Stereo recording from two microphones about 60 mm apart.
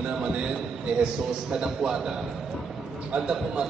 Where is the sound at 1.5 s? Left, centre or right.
Centre.